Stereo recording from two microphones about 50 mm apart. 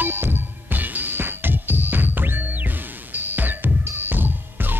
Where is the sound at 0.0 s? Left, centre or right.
Right.